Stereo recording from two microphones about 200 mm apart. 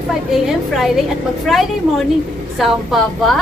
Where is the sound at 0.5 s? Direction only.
Centre (ahead or behind).